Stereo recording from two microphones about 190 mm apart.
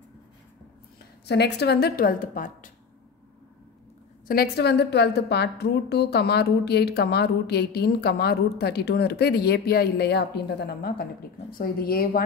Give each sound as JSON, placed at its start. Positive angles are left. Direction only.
{"t": 1.2, "sound": "a woman's voice", "side_deg": 60}
{"t": 4.3, "sound": "a woman's voice", "side_deg": 55}